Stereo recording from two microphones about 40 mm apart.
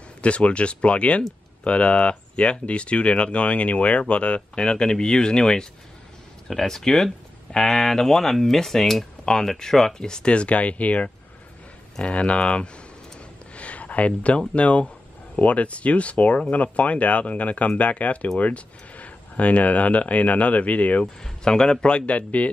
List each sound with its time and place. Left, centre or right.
0.2 s speech: left; by 9.0 s centre
9.2 s speech: centre
13.6 s a sound: left
14.5 s speech: left
21.2 s speech: centre; by 22.5 s left